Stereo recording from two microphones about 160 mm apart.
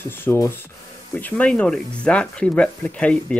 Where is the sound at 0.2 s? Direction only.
15° left (ahead or behind).